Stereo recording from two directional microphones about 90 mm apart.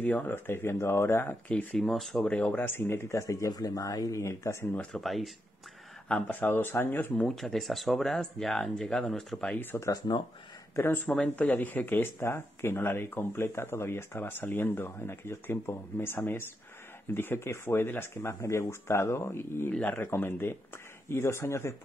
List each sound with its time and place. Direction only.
0.0 s speech: 20° left (ahead or behind)
1.5 s speech: 15° left (ahead or behind)
1.9 s speech: 5° left (ahead or behind)
2.3 s speech: 15° left (ahead or behind)
4.9 s speech: centre (ahead or behind)
6.4 s speech: 25° left (ahead or behind)
7.2 s speech: 5° left (ahead or behind)
9.6 s speech: 25° left (ahead or behind)
9.8 s speech: 40° left (ahead or behind)
11.1 s speech: 15° left (ahead or behind); by 21.7 s 30° left (ahead or behind)